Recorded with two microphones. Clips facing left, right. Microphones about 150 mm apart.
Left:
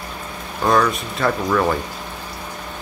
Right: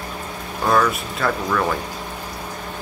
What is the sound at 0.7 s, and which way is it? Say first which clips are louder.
Speech: left 1 dB; centre (ahead or behind).